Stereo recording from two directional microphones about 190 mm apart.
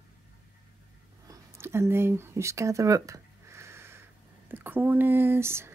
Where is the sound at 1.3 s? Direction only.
15° right (ahead or behind).